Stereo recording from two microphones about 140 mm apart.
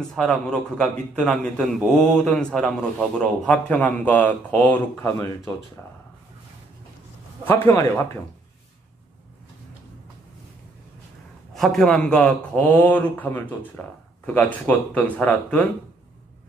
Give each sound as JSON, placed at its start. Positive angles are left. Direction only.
{"t": 0.1, "sound": "a man's voice", "side_deg": 0}
{"t": 7.4, "sound": "a man's voice", "side_deg": 15}
{"t": 11.5, "sound": "a man's voice", "side_deg": 0}